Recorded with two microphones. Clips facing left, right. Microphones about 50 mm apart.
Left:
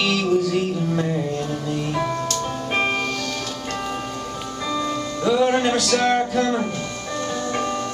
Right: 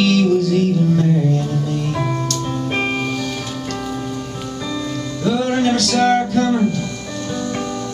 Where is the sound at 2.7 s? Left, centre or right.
Centre.